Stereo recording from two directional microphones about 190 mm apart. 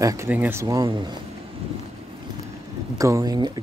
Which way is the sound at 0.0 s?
15° right (ahead or behind).